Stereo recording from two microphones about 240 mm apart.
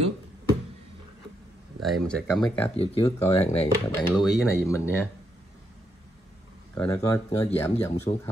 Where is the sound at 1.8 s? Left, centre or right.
Centre.